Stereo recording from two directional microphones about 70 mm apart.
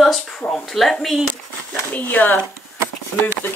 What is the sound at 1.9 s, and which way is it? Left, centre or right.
Speech, left.